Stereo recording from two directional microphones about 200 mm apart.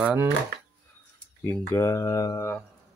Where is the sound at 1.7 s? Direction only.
15° left (ahead or behind).